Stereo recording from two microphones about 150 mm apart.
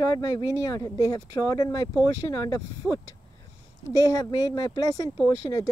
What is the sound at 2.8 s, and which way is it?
Speech, 10° right (ahead or behind).